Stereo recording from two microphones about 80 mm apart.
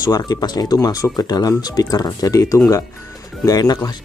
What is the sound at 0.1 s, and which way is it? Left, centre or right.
Speech, left.